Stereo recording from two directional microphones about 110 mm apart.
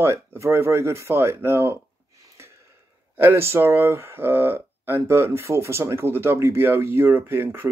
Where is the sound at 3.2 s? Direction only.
20° right (ahead or behind).